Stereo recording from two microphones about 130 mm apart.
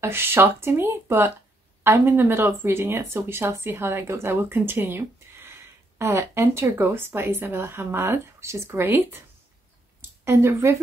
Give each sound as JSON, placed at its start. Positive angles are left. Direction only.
{"t": 0.0, "sound": "speech", "side_deg": -15}
{"t": 10.2, "sound": "speech", "side_deg": -20}